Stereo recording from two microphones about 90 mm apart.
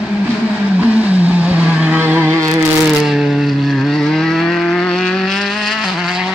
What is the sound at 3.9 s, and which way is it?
Vehicle, 5° left (ahead or behind).